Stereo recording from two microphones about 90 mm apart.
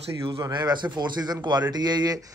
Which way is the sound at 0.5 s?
55° right (ahead or behind).